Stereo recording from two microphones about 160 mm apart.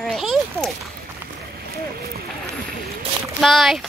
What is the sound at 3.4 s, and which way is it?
Speech, centre (ahead or behind).